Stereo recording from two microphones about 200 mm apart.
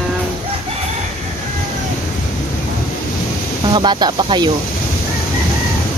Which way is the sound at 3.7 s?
20° right (ahead or behind).